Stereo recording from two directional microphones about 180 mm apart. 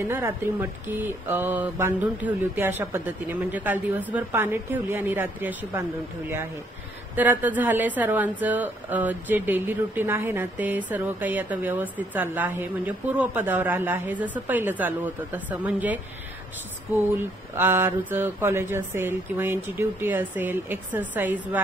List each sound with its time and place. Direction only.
0.0 s a woman's voice: 15° right (ahead or behind)
7.2 s a woman's voice: 10° right (ahead or behind)
17.2 s a woman's voice: 10° right (ahead or behind)